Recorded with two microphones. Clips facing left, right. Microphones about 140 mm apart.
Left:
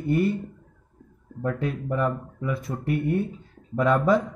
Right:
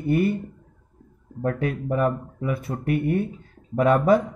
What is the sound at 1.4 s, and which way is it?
Speech, 55° right (ahead or behind).